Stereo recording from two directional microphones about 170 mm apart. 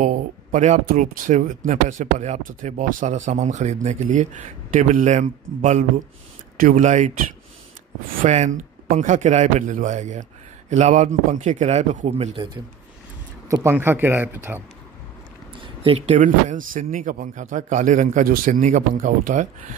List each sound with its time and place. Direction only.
0.0 s speech: 50° right (ahead or behind)
8.2 s speech: 45° right (ahead or behind)
13.5 s speech: 15° right (ahead or behind)
15.6 s a sound: 35° right (ahead or behind)
16.2 s speech: 50° right (ahead or behind)